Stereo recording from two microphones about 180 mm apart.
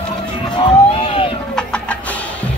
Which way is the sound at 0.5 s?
30° left (ahead or behind).